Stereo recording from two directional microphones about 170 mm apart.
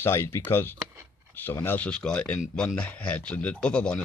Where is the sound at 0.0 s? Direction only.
15° left (ahead or behind).